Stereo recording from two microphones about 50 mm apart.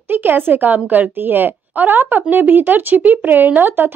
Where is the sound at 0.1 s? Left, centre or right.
Right.